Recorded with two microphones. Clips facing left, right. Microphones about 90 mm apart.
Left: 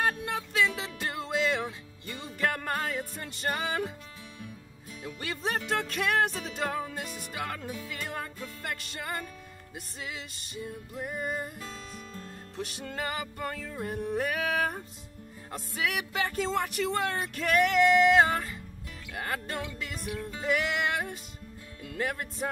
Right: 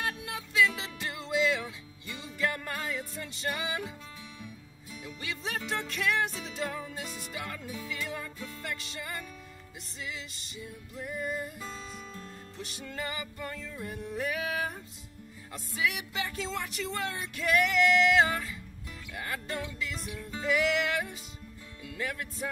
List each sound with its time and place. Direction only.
0.0 s music: 50° left (ahead or behind)
5.0 s speech: 50° left (ahead or behind)
8.6 s music: 55° left (ahead or behind)
9.9 s speech: 50° left (ahead or behind)
11.6 s music: centre (ahead or behind)
12.5 s music: 55° left (ahead or behind)
15.5 s speech: 55° left (ahead or behind)